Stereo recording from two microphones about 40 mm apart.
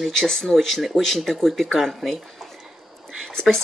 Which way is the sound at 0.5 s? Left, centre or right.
Centre.